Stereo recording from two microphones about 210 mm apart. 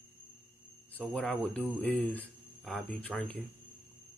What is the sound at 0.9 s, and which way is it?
Speech, centre (ahead or behind).